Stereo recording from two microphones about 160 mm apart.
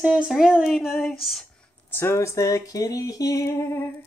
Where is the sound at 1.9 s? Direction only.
15° left (ahead or behind).